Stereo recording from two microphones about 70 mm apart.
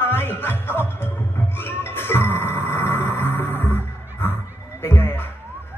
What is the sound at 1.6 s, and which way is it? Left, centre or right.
Music, left.